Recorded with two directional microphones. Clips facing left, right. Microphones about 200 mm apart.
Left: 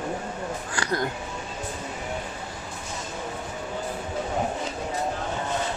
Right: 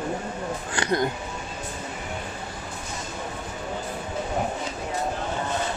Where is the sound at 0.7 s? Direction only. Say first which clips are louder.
Right 4 dB; 20° right (ahead or behind).